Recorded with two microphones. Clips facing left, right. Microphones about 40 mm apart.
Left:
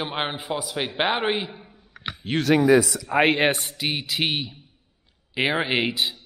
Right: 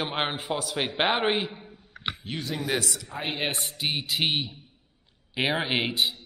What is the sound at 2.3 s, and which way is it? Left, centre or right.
Speech, left.